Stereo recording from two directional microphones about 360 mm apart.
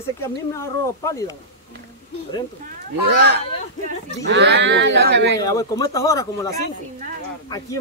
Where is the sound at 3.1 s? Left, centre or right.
Right.